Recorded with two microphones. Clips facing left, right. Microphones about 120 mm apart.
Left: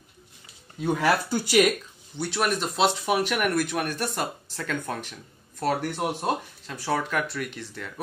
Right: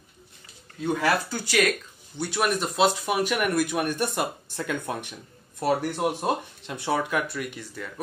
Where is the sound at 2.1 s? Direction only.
5° right (ahead or behind).